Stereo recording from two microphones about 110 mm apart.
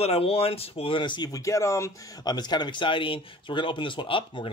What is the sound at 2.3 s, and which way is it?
Speech, 40° left (ahead or behind).